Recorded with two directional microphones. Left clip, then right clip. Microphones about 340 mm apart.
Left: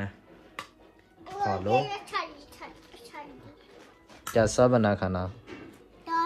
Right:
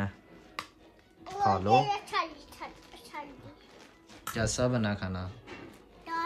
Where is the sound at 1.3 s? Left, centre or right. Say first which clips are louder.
Right 1 dB; right.